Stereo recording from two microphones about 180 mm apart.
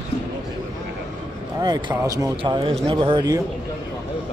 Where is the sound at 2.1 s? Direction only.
20° right (ahead or behind).